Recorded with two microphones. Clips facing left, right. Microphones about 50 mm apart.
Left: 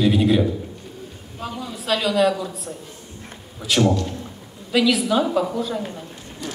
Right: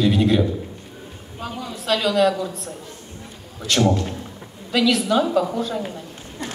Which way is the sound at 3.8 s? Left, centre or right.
Right.